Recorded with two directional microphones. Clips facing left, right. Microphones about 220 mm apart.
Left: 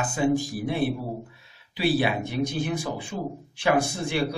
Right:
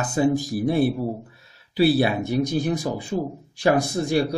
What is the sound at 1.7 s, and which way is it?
Speech, 40° right (ahead or behind).